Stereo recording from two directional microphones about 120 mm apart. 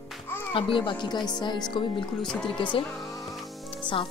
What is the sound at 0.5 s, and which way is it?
Speech, 45° left (ahead or behind).